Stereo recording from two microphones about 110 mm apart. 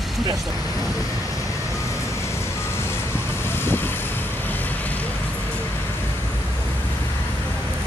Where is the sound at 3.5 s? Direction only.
20° left (ahead or behind).